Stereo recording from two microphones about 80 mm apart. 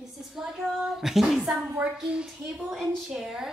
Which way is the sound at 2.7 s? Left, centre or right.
Centre.